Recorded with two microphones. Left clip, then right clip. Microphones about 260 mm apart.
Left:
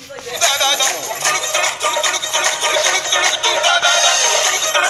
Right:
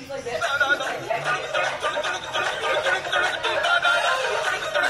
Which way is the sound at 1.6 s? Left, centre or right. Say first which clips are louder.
Left 7 dB; left.